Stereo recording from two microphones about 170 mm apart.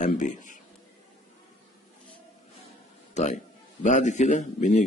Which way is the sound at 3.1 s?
45° left (ahead or behind).